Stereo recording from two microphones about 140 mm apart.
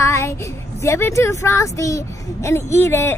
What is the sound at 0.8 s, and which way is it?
Speech, 20° left (ahead or behind).